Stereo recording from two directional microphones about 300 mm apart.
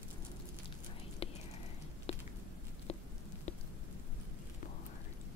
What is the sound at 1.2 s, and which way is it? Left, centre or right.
Whispering, centre.